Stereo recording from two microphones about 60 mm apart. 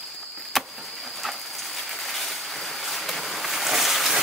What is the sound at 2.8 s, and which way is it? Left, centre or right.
Boat, centre.